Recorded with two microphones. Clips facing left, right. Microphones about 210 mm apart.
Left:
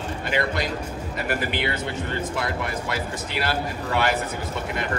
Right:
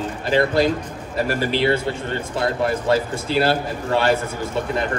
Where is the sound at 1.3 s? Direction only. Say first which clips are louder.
Right 7 dB; 30° right (ahead or behind).